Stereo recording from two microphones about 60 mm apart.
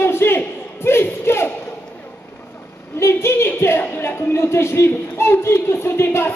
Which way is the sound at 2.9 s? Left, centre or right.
Left.